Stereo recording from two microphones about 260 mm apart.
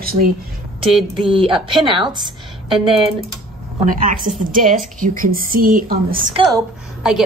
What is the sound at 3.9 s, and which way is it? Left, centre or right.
A woman's voice, right.